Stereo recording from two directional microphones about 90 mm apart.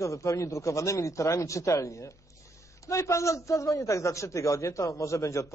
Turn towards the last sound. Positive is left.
turn(degrees=35)  # may be behind; listen again after turning